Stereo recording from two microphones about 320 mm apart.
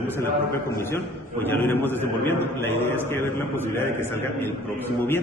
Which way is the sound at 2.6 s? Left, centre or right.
Centre.